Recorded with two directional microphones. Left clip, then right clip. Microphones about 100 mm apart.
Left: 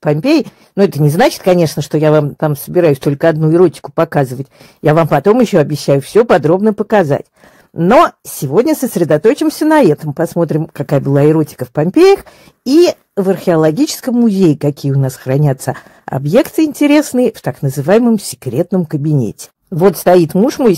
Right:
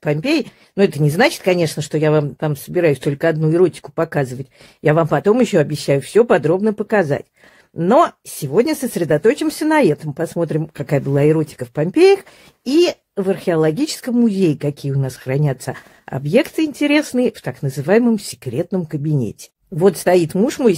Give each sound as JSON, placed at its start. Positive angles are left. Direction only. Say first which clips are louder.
{"t": 0.0, "sound": "speech", "louder": "left 6 dB", "side_deg": 45}
{"t": 5.0, "sound": "speech", "louder": "left 5 dB", "side_deg": 35}
{"t": 6.1, "sound": "speech", "louder": "left 4 dB", "side_deg": 25}
{"t": 6.4, "sound": "speech", "louder": "left 5 dB", "side_deg": 40}
{"t": 7.0, "sound": "speech", "louder": "left 5 dB", "side_deg": 50}
{"t": 18.7, "sound": "speech", "louder": "left 6 dB", "side_deg": 35}